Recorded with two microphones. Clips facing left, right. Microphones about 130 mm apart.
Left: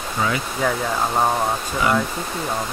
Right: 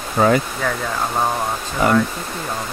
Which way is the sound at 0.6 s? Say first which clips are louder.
Left 1 dB; 10° left (ahead or behind).